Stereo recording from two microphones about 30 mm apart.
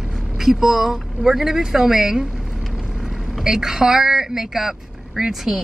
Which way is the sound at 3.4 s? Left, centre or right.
Centre.